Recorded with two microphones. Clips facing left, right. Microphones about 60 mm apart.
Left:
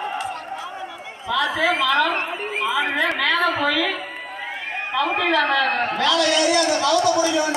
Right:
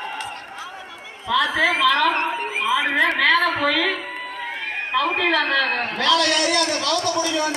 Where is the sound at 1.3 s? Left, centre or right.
Centre.